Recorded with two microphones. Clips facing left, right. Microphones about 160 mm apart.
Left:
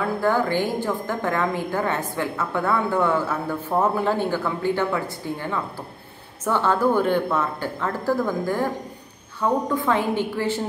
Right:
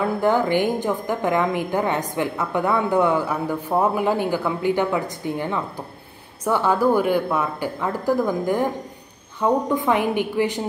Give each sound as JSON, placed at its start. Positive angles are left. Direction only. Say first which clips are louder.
{"t": 0.2, "sound": "a woman's voice", "louder": "right 2 dB", "side_deg": -20}